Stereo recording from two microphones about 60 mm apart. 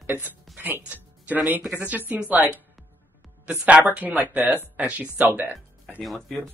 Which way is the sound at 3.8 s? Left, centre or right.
Right.